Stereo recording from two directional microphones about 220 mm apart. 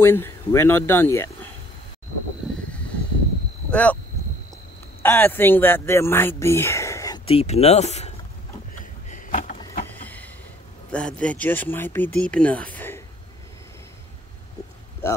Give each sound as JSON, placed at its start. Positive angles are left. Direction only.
{"t": 0.0, "sound": "speech", "side_deg": 10}
{"t": 3.7, "sound": "speech", "side_deg": 5}
{"t": 5.0, "sound": "speech", "side_deg": 10}
{"t": 8.7, "sound": "a sound", "side_deg": 35}
{"t": 9.9, "sound": "a sound", "side_deg": 10}
{"t": 10.9, "sound": "speech", "side_deg": 5}
{"t": 15.0, "sound": "speech", "side_deg": 10}